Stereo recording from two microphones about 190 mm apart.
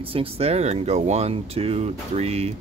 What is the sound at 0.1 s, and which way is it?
Speech, 30° right (ahead or behind).